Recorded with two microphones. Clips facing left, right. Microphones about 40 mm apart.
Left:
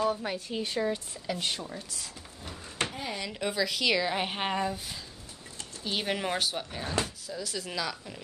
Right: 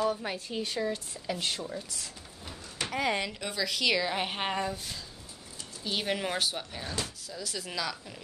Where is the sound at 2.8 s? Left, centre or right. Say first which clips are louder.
Left 3 dB; left.